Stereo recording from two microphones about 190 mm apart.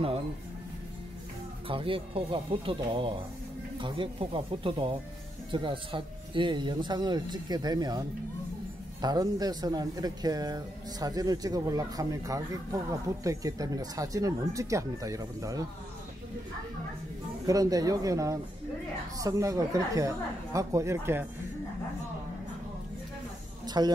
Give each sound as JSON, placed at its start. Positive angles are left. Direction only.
{"t": 1.7, "sound": "speech", "side_deg": -30}
{"t": 9.0, "sound": "speech", "side_deg": -20}
{"t": 17.5, "sound": "speech", "side_deg": -20}
{"t": 23.6, "sound": "a sound", "side_deg": -20}